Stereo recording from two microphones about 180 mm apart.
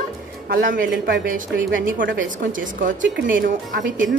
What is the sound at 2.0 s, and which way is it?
Speech, 90° right.